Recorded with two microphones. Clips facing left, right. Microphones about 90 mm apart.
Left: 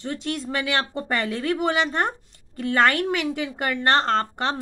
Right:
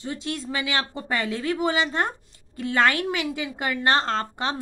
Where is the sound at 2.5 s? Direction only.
10° right (ahead or behind).